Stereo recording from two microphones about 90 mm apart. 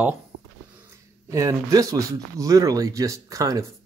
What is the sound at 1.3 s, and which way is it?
Speech, 35° right (ahead or behind).